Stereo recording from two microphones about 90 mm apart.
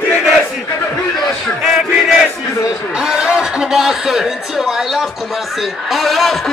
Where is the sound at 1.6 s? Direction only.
5° right (ahead or behind).